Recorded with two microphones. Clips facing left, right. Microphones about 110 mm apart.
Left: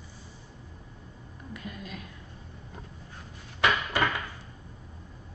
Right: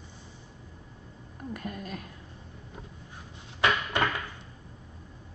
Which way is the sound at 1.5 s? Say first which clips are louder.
Right 4 dB; 50° right (ahead or behind).